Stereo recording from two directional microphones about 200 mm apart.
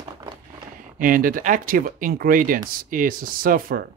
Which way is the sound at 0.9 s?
45° right (ahead or behind).